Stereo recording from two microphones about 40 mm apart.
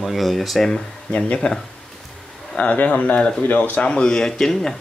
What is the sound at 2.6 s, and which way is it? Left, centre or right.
Speech, left.